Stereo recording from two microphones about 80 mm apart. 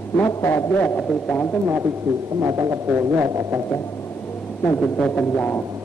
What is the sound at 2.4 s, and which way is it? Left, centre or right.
Speech, right.